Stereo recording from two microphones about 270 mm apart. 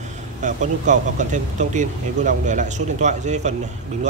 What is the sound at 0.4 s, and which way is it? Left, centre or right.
A man's voice, right.